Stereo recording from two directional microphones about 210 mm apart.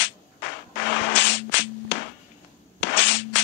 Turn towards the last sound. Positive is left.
turn(degrees=60)  # may be behind; listen again after turning